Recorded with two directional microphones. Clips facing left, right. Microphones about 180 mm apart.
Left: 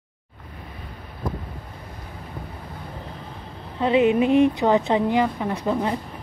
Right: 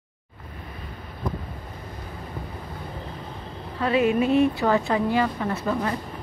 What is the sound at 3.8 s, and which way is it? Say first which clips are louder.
A woman's voice: left 3 dB; 20° left (ahead or behind).